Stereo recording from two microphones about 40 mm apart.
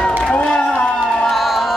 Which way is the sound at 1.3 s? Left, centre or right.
Centre.